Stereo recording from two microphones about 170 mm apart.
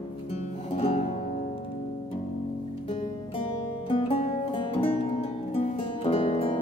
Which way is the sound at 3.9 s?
30° left (ahead or behind).